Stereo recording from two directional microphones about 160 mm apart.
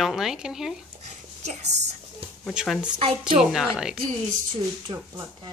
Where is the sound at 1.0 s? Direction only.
45° right (ahead or behind).